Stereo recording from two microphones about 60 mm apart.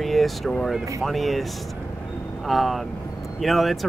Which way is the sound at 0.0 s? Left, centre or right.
Centre.